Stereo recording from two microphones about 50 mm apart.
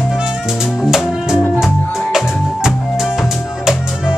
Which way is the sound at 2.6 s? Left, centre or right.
Centre.